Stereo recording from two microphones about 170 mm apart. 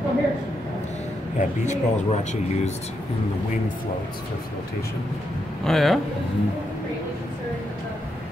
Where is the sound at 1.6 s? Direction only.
45° left (ahead or behind).